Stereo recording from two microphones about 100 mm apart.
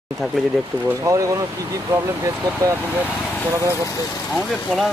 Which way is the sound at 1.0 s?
35° right (ahead or behind).